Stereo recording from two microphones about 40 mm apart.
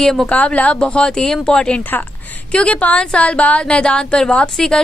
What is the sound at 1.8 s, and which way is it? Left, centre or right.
Speech, left.